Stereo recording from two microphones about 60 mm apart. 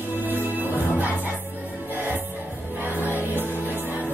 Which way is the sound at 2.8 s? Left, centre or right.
Right.